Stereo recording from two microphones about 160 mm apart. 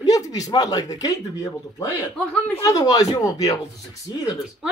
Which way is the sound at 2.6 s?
25° left (ahead or behind).